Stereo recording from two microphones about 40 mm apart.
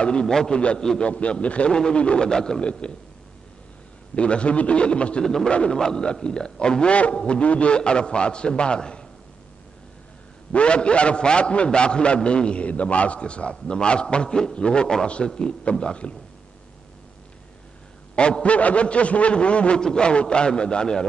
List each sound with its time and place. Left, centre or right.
0.0 s a man's voice: centre
0.6 s a man's voice: left
2.2 s a sound: centre
2.6 s a man's voice: left
4.1 s a man's voice: left
5.2 s a sound: centre
5.5 s a man's voice: left
10.5 s a man's voice: left
18.1 s a man's voice: left